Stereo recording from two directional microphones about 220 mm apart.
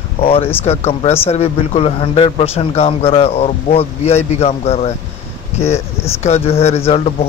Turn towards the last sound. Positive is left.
turn(degrees=30)  # may be behind; listen again after turning